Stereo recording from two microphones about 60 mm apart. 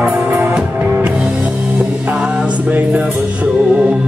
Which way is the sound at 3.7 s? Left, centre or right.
Centre.